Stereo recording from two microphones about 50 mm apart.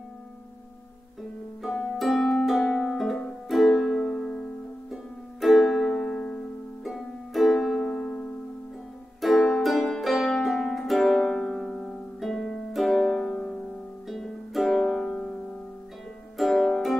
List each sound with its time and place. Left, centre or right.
1.6 s harp: centre
2.1 s harp: centre
2.6 s music: centre
3.4 s music: centre
4.0 s music: centre
4.9 s music: centre
6.8 s music: centre
7.8 s music: left
9.2 s music: centre
14.0 s music: centre
16.3 s music: centre